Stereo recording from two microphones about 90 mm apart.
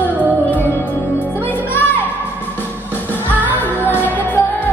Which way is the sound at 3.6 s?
20° left (ahead or behind).